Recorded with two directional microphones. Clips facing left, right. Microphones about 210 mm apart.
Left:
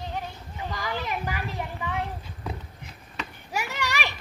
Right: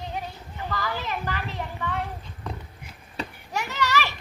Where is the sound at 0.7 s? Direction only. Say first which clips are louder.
Right 1 dB; 15° left (ahead or behind).